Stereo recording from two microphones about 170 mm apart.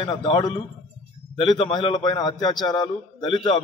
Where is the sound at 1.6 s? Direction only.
30° left (ahead or behind).